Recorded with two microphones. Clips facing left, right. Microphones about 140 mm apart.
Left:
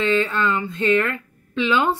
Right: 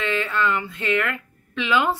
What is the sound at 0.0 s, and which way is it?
A woman's voice, 30° left (ahead or behind).